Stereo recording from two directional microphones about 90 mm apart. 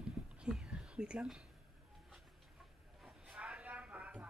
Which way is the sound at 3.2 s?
15° right (ahead or behind).